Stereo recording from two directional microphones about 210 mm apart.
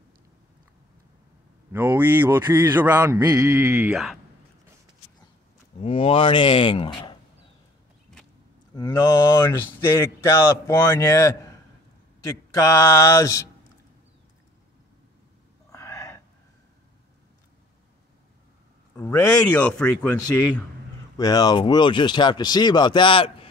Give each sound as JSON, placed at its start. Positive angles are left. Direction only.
{"t": 1.7, "sound": "speech", "side_deg": -10}
{"t": 5.8, "sound": "speech", "side_deg": 25}
{"t": 8.7, "sound": "speech", "side_deg": 20}
{"t": 12.5, "sound": "speech", "side_deg": 15}
{"t": 15.7, "sound": "a sound", "side_deg": 15}
{"t": 18.9, "sound": "speech", "side_deg": 15}
{"t": 21.2, "sound": "speech", "side_deg": 20}